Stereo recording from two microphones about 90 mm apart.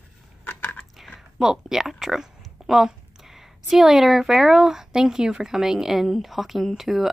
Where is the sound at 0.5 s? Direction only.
20° left (ahead or behind).